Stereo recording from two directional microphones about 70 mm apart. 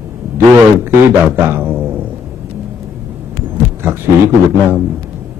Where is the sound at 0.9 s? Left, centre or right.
Right.